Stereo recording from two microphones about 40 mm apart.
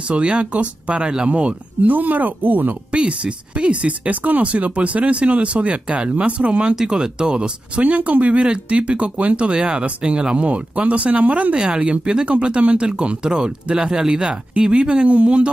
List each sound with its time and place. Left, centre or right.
0.1 s speech: right
0.9 s speech: right
1.8 s speech: right
2.9 s speech: right
6.7 s speech: centre
7.8 s speech: right
11.5 s speech: right